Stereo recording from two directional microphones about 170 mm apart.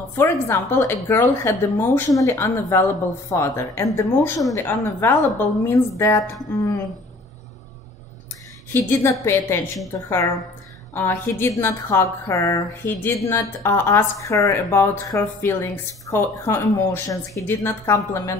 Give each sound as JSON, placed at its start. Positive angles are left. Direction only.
{"t": 0.2, "sound": "a woman's voice", "side_deg": 15}
{"t": 8.7, "sound": "a woman's voice", "side_deg": 15}